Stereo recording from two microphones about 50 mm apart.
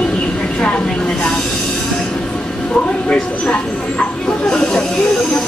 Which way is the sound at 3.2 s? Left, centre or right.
Left.